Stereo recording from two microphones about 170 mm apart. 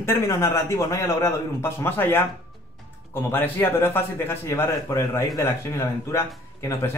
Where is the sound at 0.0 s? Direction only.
15° left (ahead or behind).